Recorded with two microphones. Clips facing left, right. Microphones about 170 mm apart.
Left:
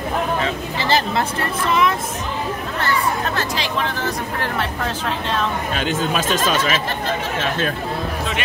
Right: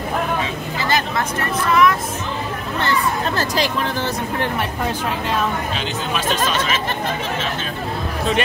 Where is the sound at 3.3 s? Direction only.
40° right (ahead or behind).